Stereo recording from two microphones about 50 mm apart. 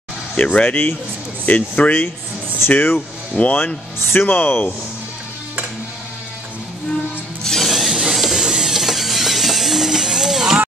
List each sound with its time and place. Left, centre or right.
0.4 s speech: left
7.4 s music: centre
7.7 s a sound: centre
8.1 s ratchet: centre